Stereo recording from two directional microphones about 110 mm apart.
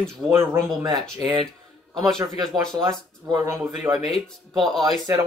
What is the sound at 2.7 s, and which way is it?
Speech, 35° right (ahead or behind).